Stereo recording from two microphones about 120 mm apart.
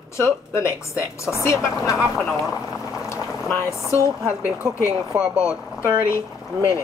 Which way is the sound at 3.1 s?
20° left (ahead or behind).